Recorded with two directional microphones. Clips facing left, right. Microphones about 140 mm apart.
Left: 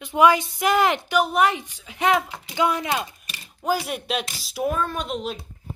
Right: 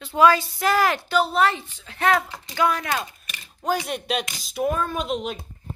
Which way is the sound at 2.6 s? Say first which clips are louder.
Even; 20° left (ahead or behind).